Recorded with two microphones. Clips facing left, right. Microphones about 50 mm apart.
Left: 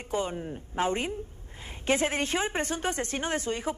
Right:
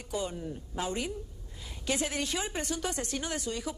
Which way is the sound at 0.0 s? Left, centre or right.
Left.